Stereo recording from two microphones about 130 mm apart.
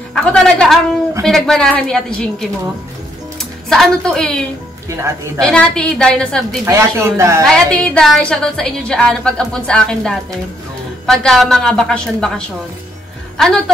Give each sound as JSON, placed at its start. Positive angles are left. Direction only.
{"t": 0.1, "sound": "a woman's voice", "side_deg": 5}
{"t": 4.8, "sound": "speech", "side_deg": -20}
{"t": 5.4, "sound": "a woman's voice", "side_deg": 10}
{"t": 6.6, "sound": "speech", "side_deg": -20}
{"t": 7.4, "sound": "a woman's voice", "side_deg": 5}